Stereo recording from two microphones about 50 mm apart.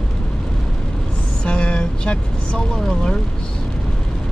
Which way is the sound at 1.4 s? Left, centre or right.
Left.